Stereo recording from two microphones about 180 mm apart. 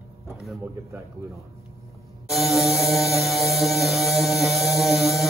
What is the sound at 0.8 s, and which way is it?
Speech, 15° right (ahead or behind).